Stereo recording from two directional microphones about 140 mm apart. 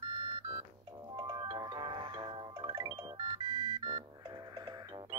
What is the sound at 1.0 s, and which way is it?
Music, 25° right (ahead or behind).